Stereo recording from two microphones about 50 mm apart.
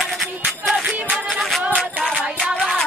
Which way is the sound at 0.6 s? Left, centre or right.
Centre.